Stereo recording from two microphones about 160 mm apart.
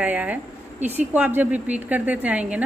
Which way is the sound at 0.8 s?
45° right (ahead or behind).